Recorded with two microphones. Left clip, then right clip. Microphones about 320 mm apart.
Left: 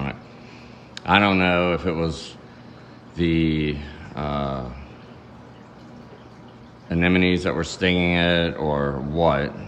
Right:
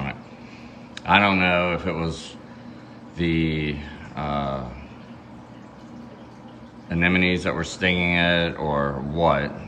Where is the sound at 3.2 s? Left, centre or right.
Centre.